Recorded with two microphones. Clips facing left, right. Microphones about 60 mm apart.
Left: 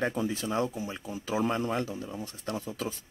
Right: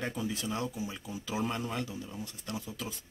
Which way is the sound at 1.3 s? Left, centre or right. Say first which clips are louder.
Left 5 dB; left.